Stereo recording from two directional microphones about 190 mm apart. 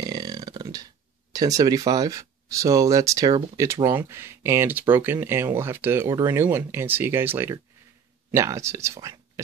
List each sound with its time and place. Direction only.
0.0 s burping: 20° right (ahead or behind)
1.3 s speech: 20° right (ahead or behind)